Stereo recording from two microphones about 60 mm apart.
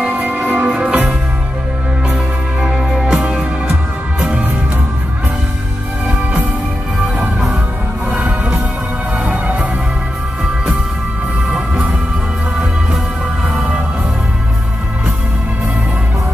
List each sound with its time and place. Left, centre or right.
0.1 s music: right
0.7 s music: centre
2.6 s music: centre
8.1 s music: right
11.5 s music: centre